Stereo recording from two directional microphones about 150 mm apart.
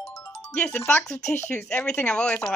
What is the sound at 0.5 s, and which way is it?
Speech, 5° left (ahead or behind).